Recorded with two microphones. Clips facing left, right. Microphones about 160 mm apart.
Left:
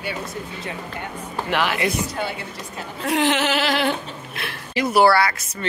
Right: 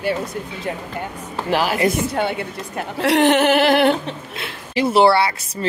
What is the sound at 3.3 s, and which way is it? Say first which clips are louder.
Speech: right 6 dB; 55° right (ahead or behind).